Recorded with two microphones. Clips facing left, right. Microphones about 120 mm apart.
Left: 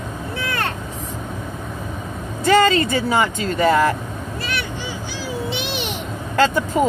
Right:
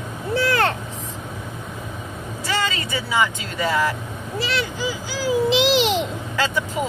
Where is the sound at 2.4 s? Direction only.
50° left (ahead or behind).